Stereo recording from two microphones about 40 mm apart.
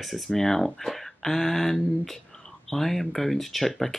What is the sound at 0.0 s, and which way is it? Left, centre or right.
Speech, centre.